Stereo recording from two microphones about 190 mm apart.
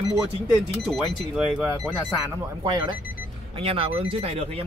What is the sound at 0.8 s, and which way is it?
Speech, 5° right (ahead or behind).